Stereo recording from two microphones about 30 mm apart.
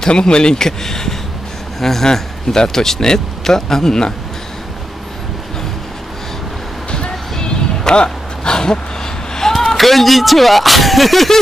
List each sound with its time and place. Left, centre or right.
0.1 s speech: left
0.7 s speech: centre
7.1 s a sound: left
9.6 s speech: centre